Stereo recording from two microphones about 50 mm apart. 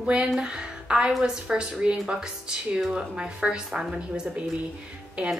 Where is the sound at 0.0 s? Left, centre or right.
Centre.